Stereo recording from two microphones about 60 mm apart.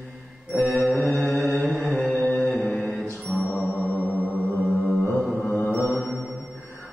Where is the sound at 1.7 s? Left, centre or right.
Right.